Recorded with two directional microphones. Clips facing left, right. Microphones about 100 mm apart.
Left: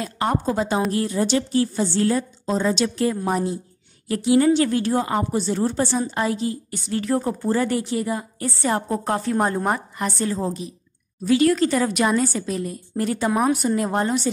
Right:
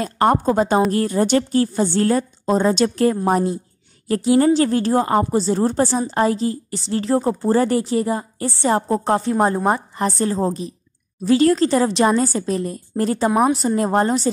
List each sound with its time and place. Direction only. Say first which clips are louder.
0.0 s a woman's voice: right 6 dB; 45° right (ahead or behind)
4.1 s a woman's voice: right 2 dB; 40° right (ahead or behind)
9.9 s a woman's voice: right 4 dB; 35° right (ahead or behind)